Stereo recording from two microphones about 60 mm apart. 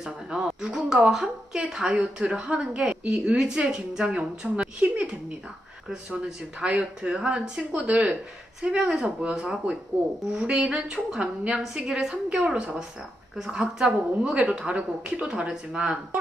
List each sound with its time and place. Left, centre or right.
0.0 s a woman's voice: centre
6.6 s a woman's voice: centre